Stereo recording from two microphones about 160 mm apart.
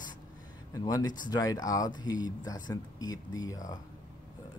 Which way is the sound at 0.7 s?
20° left (ahead or behind).